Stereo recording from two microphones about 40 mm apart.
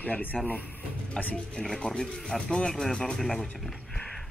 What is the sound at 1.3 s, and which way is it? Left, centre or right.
Speech, left.